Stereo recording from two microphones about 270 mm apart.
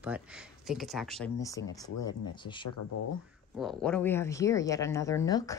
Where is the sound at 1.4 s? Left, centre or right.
Centre.